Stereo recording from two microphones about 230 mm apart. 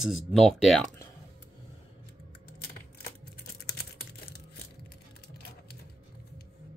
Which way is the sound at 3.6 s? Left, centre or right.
Left.